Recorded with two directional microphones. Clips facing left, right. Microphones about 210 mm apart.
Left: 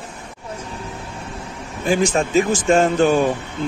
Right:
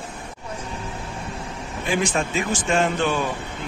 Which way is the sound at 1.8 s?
40° left (ahead or behind).